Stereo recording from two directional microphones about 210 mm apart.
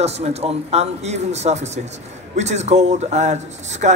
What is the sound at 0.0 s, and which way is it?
Speech, 30° right (ahead or behind).